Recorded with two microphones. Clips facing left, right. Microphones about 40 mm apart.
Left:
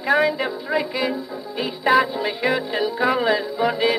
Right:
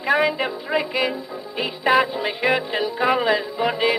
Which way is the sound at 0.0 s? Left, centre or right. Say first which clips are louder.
Left 1 dB; right.